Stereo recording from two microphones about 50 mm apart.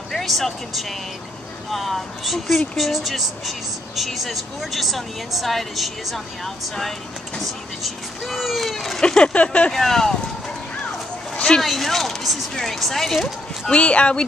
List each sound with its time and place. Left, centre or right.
0.1 s speech: centre
9.0 s speech: centre
9.7 s speech: centre
11.3 s a sound: left
11.6 s speech: centre
13.7 s speech: left